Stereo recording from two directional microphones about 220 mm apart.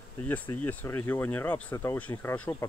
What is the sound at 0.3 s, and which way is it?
Speech, 10° left (ahead or behind).